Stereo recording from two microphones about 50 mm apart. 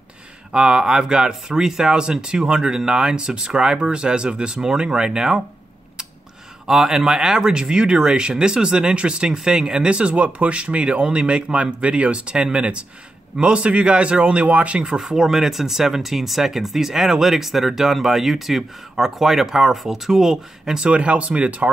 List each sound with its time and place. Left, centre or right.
0.5 s speech: centre
6.7 s speech: centre
15.0 s speech: centre
20.9 s speech: right